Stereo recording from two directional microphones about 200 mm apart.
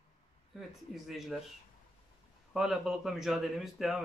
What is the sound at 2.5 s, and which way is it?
Speech, centre (ahead or behind).